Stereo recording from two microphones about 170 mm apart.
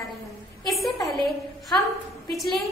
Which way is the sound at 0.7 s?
Centre (ahead or behind).